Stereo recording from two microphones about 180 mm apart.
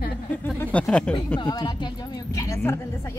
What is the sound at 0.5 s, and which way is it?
Speech, 5° left (ahead or behind).